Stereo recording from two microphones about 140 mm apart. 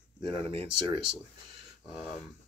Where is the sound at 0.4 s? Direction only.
40° right (ahead or behind).